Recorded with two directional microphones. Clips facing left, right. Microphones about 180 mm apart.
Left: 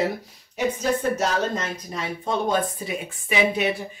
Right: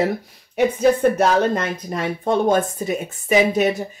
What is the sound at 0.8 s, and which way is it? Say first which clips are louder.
Speech: right 9 dB; 60° right (ahead or behind).